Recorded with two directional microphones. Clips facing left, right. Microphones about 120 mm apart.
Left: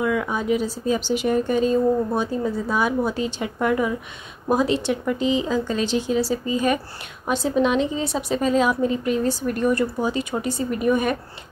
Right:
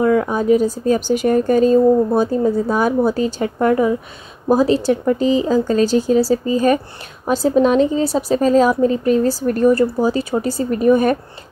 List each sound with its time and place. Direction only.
0.0 s speech: 40° right (ahead or behind)